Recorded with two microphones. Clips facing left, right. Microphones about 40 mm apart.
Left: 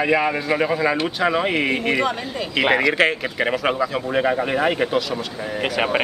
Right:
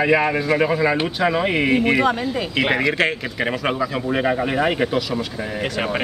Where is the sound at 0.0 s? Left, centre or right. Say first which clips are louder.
Right 2 dB; centre.